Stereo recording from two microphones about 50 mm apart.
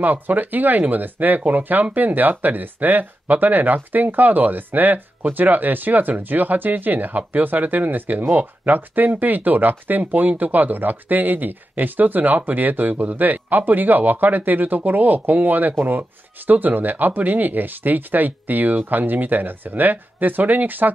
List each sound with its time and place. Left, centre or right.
0.0 s speech: right